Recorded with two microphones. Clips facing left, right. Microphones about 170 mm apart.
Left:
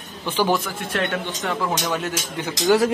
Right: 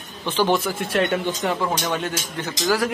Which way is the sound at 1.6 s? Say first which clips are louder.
Even; centre (ahead or behind).